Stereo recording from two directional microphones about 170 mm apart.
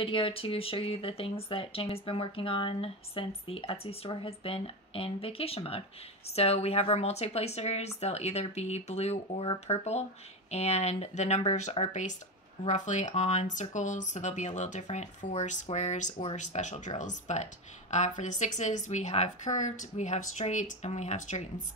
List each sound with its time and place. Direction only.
0.0 s a woman's voice: 30° left (ahead or behind)